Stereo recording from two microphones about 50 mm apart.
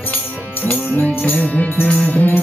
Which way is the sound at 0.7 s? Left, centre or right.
Left.